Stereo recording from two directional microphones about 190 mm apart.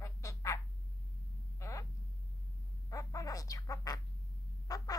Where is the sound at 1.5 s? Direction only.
15° left (ahead or behind).